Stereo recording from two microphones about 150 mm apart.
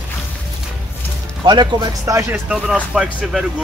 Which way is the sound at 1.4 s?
30° right (ahead or behind).